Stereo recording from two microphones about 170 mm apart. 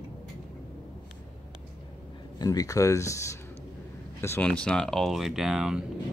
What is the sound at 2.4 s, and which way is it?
Speech, 20° left (ahead or behind).